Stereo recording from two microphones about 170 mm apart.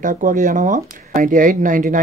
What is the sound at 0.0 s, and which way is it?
Speech, 50° right (ahead or behind).